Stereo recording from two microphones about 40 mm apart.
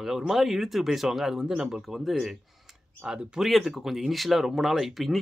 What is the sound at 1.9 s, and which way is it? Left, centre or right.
Speech, centre.